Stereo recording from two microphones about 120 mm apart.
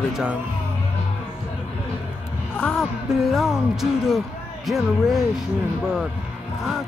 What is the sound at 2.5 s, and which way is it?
Music, 5° left (ahead or behind).